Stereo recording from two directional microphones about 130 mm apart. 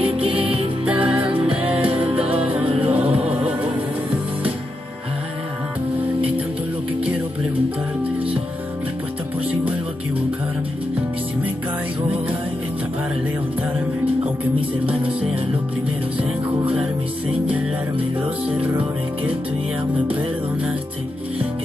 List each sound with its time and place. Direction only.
0.0 s music: 45° right (ahead or behind)
0.8 s music: 10° right (ahead or behind)
1.2 s music: 40° right (ahead or behind)
2.6 s music: 45° right (ahead or behind)
2.9 s music: 10° right (ahead or behind)